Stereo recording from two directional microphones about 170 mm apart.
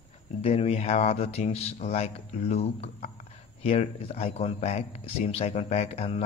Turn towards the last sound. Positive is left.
turn(degrees=35)  # may be behind; listen again after turning